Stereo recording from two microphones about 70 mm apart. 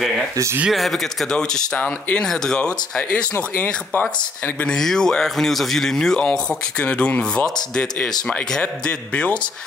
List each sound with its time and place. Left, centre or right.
0.7 s speech: centre
1.3 s speech: centre
3.3 s speech: left
4.6 s speech: centre